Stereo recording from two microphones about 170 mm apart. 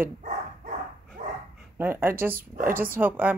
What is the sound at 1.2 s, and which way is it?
Dog, 45° right (ahead or behind).